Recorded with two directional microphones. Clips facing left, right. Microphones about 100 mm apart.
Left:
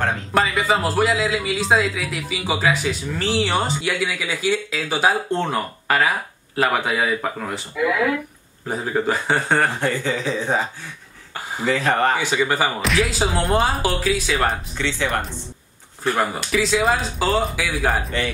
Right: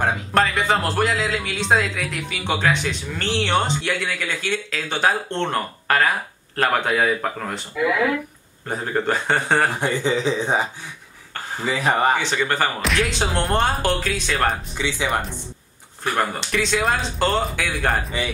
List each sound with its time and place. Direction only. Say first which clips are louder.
0.3 s a man's voice: left 1 dB; centre (ahead or behind)
9.8 s speech: right 1 dB; 20° right (ahead or behind)
12.2 s a man's voice: left 1 dB; 10° left (ahead or behind)
14.8 s speech: left 3 dB; 15° right (ahead or behind)
16.5 s a man's voice: left 2 dB; centre (ahead or behind)